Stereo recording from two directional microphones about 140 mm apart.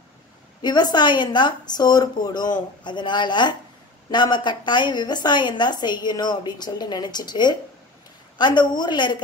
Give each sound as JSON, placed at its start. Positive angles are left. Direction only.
{"t": 0.6, "sound": "a woman's voice", "side_deg": 30}